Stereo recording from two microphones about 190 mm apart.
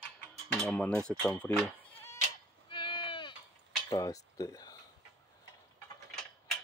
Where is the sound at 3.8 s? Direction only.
20° left (ahead or behind).